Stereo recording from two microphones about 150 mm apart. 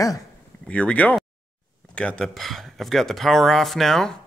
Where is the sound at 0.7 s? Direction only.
10° left (ahead or behind).